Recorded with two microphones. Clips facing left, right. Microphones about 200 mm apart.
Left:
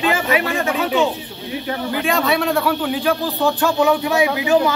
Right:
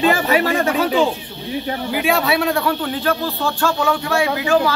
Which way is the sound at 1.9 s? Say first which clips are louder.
Right 1 dB; 10° right (ahead or behind).